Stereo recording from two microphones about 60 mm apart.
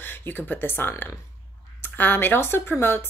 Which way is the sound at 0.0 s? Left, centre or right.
Left.